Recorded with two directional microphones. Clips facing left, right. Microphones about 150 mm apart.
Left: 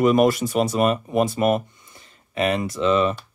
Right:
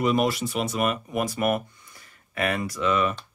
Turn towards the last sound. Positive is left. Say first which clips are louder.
# left 5 dB
turn(degrees=25)  # may be behind; listen again after turning